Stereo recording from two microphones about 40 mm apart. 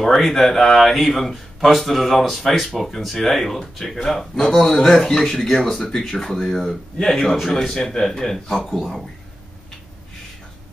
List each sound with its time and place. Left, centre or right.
0.0 s speech: centre